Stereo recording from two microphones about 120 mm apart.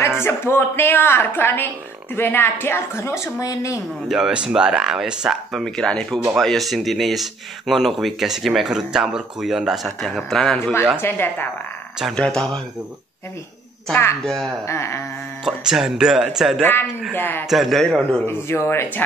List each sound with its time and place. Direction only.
0.2 s a woman's voice: 20° left (ahead or behind)
4.1 s speech: 5° right (ahead or behind)
11.0 s a woman's voice: 20° left (ahead or behind)
12.0 s speech: 5° left (ahead or behind)
14.2 s speech: 5° left (ahead or behind)
14.7 s a woman's voice: 25° left (ahead or behind)
15.4 s speech: 5° right (ahead or behind)
17.1 s a woman's voice: 15° left (ahead or behind)
17.5 s speech: centre (ahead or behind)
18.2 s a woman's voice: 20° left (ahead or behind)